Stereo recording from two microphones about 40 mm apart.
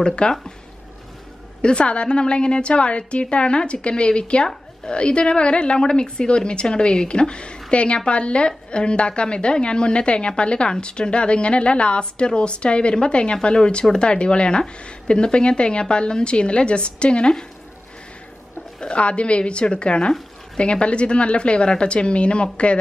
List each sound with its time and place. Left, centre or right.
0.0 s a woman's voice: left
1.6 s a woman's voice: left
18.8 s a woman's voice: left